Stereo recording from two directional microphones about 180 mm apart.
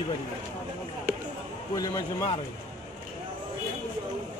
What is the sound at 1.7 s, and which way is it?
Speech, 20° left (ahead or behind).